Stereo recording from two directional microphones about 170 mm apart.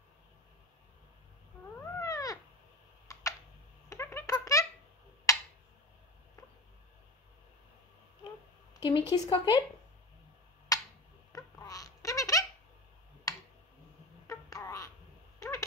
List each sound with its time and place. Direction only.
1.8 s cat: 20° left (ahead or behind)
3.1 s computer keyboard: 20° left (ahead or behind)
3.9 s a sound: 15° left (ahead or behind)
8.7 s a sound: 25° left (ahead or behind)
9.3 s speech: 30° left (ahead or behind)
10.7 s a sound: 20° left (ahead or behind)
11.3 s laughter: 20° left (ahead or behind)
13.3 s tick: 20° left (ahead or behind)
14.2 s babbling: 20° left (ahead or behind)
15.3 s cat: 20° left (ahead or behind)